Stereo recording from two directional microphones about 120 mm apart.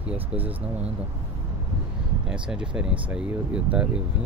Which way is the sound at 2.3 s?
5° right (ahead or behind).